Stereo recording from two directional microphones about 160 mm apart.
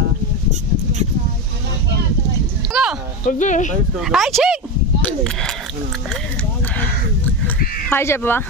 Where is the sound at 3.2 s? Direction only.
55° left (ahead or behind).